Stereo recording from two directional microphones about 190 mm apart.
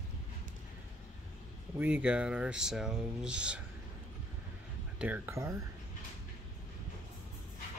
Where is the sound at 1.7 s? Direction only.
10° right (ahead or behind).